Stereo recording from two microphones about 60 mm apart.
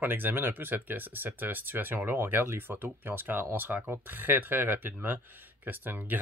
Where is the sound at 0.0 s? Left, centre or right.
Right.